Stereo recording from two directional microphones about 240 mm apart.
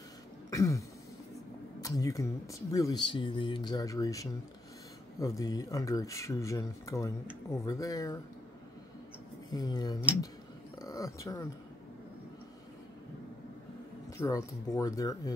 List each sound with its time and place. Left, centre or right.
0.5 s throat clearing: centre
1.8 s speech: centre
9.5 s speech: centre
10.8 s a sound: centre
14.1 s speech: centre